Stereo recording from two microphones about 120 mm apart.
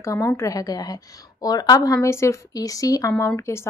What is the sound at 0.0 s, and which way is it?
A woman's voice, 25° left (ahead or behind).